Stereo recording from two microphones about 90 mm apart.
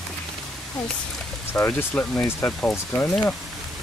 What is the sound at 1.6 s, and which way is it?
Speech, 25° left (ahead or behind).